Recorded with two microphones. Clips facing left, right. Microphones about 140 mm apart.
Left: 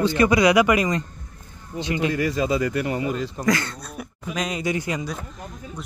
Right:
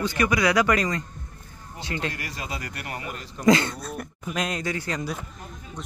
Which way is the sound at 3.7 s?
Centre (ahead or behind).